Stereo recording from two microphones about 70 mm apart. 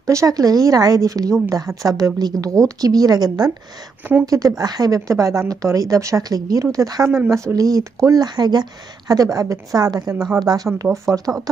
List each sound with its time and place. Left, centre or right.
0.0 s a woman's voice: right
0.3 s speech: right
4.3 s speech: right
6.2 s speech: right
7.2 s speech: right
10.8 s speech: right